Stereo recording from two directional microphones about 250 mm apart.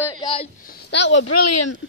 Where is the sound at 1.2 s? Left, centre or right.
Left.